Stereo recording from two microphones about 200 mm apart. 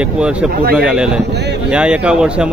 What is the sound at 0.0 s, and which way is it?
Speech, 5° right (ahead or behind).